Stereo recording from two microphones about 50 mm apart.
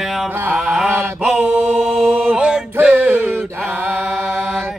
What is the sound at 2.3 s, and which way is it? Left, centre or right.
Male singing, centre.